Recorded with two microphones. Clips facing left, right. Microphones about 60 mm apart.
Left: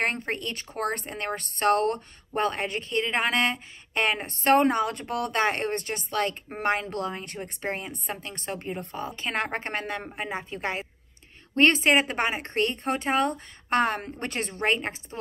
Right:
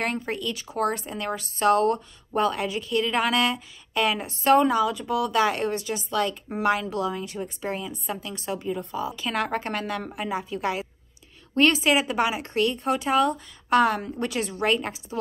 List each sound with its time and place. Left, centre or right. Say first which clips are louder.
0.3 s a woman's voice: right 2 dB; left